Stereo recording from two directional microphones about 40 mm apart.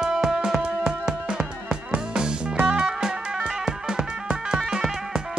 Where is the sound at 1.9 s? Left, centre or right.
Right.